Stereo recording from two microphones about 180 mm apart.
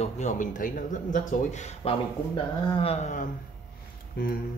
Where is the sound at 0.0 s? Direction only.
40° left (ahead or behind).